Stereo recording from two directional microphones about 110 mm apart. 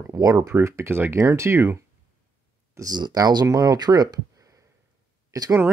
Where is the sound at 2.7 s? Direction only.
35° right (ahead or behind).